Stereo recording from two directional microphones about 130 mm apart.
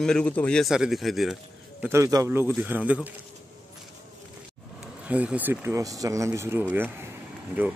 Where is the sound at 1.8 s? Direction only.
25° right (ahead or behind).